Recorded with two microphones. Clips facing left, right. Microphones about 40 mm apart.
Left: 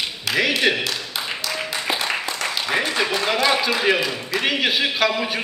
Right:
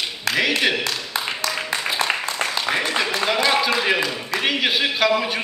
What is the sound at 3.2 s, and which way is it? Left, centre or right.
A man's voice, centre.